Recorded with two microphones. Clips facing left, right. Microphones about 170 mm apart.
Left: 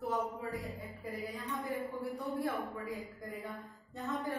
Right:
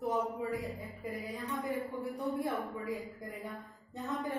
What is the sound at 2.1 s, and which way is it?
Speech, 20° right (ahead or behind).